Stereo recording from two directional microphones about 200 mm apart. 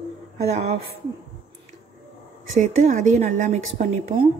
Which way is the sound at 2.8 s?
40° right (ahead or behind).